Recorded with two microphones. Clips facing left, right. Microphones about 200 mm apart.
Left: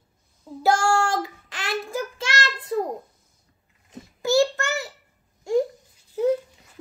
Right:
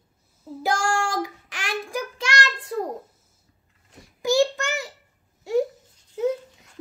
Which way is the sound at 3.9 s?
15° right (ahead or behind).